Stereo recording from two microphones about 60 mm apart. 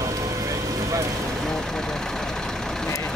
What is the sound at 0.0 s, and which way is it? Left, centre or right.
Vehicle, right.